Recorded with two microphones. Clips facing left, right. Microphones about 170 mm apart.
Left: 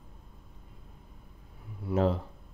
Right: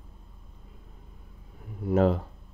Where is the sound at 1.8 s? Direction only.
55° right (ahead or behind).